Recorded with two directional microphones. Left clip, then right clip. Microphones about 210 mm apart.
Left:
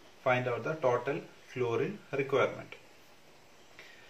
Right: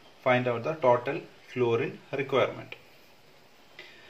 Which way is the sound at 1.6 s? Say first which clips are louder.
Right 5 dB; 40° right (ahead or behind).